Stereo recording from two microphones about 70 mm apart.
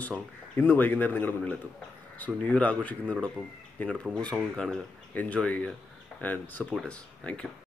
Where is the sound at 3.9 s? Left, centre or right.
Centre.